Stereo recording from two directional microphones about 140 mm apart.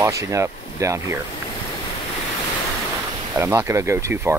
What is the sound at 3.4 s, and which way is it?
Speech, 20° right (ahead or behind).